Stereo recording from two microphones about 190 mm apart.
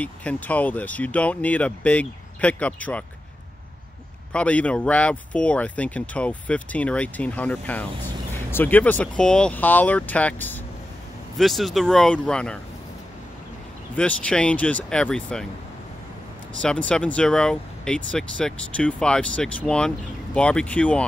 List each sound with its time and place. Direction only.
0.0 s speech: 5° left (ahead or behind)
4.3 s speech: 5° left (ahead or behind)
13.9 s speech: 5° left (ahead or behind)
16.6 s speech: 5° left (ahead or behind)